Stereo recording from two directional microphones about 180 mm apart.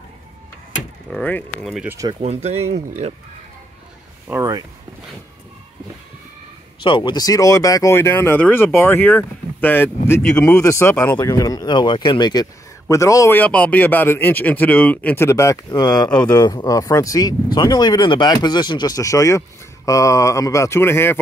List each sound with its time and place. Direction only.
1.1 s speech: 5° left (ahead or behind)
1.9 s speech: 20° right (ahead or behind)
2.2 s speech: 35° right (ahead or behind)
4.3 s speech: 15° right (ahead or behind)
6.8 s speech: 25° left (ahead or behind)